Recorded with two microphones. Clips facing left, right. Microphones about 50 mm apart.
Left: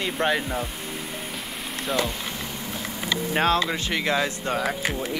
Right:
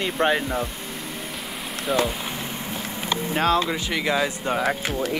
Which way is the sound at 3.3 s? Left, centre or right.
Left.